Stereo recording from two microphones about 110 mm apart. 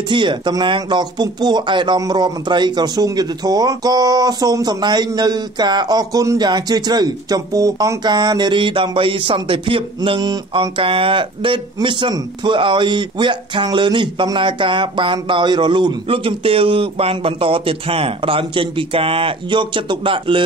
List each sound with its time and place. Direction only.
0.1 s speech: 45° right (ahead or behind)
10.2 s speech: 40° right (ahead or behind)